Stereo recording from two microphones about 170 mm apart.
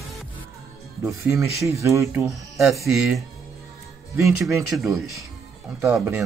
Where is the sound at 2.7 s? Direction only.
Centre (ahead or behind).